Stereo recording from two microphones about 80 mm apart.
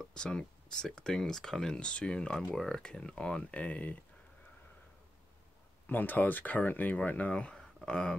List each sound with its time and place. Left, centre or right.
0.0 s speech: centre
5.9 s speech: left